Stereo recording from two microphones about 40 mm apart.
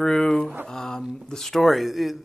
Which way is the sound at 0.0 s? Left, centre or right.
Centre.